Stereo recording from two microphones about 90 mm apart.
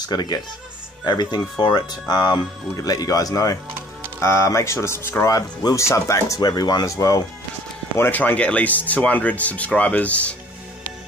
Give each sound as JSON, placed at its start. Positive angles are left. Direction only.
{"t": 0.0, "sound": "speech", "side_deg": 50}
{"t": 4.2, "sound": "speech", "side_deg": 30}
{"t": 8.0, "sound": "speech", "side_deg": 20}